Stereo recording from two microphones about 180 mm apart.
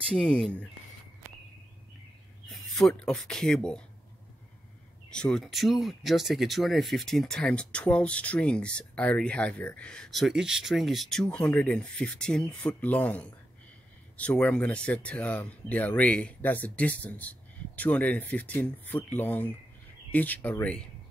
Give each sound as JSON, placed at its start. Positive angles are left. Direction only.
{"t": 0.1, "sound": "speech", "side_deg": 5}
{"t": 2.5, "sound": "speech", "side_deg": 5}
{"t": 5.1, "sound": "speech", "side_deg": 5}